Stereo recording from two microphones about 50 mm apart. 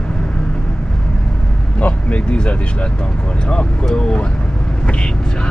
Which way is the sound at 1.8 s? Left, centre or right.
Left.